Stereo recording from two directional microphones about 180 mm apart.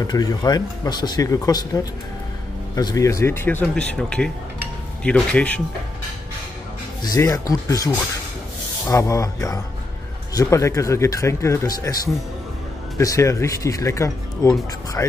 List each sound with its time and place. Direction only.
0.0 s speech: 20° left (ahead or behind)
7.0 s speech: 20° left (ahead or behind)